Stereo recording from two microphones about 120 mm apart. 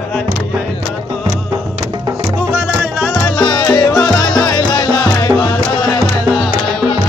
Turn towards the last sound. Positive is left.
turn(degrees=35)  # may be behind; listen again after turning